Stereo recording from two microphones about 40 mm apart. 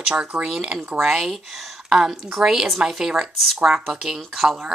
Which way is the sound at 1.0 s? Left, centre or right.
Centre.